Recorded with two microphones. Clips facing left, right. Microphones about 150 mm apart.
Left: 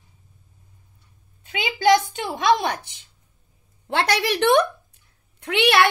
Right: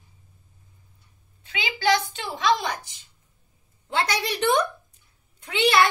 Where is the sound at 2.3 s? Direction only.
60° left (ahead or behind).